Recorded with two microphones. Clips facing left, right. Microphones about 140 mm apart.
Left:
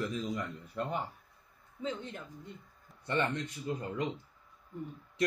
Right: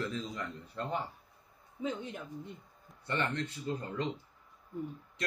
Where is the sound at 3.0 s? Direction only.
15° left (ahead or behind).